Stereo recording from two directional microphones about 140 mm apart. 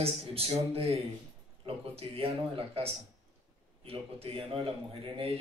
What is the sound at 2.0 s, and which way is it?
A man's voice, 45° right (ahead or behind).